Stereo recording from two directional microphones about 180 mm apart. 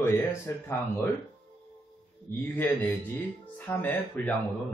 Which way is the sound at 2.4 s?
10° left (ahead or behind).